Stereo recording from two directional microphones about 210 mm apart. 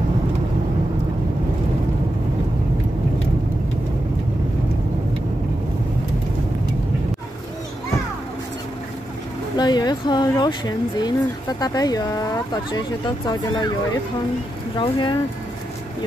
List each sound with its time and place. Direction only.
9.6 s speech: 20° left (ahead or behind)
14.8 s speech: 20° left (ahead or behind)